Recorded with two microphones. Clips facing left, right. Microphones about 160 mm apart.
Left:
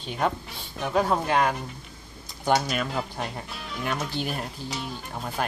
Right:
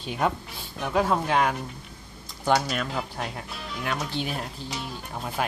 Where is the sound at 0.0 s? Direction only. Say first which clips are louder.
Even; 5° right (ahead or behind).